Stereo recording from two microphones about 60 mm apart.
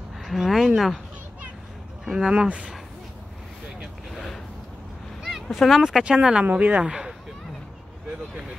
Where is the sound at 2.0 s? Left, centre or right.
Centre.